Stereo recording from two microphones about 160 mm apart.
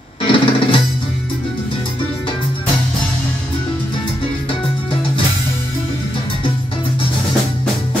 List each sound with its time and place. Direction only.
0.2 s music: 35° left (ahead or behind)